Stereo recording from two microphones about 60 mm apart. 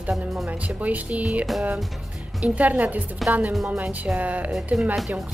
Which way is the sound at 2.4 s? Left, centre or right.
Right.